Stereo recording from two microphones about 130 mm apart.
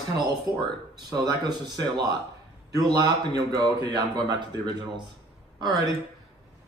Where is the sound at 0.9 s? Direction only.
30° right (ahead or behind).